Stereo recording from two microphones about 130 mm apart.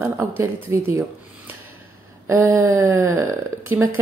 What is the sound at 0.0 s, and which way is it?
Speech, 20° right (ahead or behind).